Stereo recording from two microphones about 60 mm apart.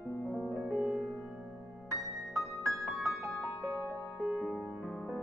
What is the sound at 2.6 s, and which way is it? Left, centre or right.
Music, centre.